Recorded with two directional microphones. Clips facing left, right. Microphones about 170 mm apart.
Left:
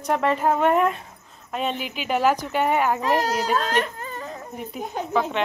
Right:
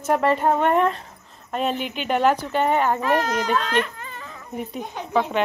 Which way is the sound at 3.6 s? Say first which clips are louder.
Even; 40° left (ahead or behind).